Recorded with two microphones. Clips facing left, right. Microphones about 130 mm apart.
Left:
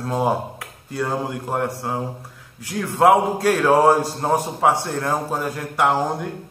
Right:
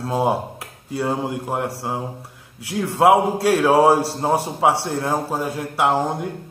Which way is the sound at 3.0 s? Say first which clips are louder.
Even; 25° right (ahead or behind).